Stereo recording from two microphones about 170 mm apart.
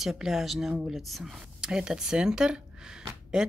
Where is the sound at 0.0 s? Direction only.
Centre (ahead or behind).